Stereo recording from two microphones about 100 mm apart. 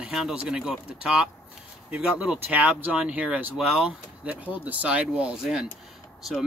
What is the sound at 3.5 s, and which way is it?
Speech, 5° right (ahead or behind).